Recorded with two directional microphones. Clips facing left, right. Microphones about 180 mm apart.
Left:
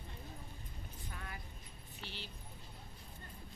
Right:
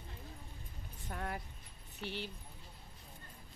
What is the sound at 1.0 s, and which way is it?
Speech, 55° right (ahead or behind).